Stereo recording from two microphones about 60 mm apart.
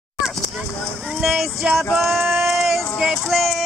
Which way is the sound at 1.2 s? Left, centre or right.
Centre.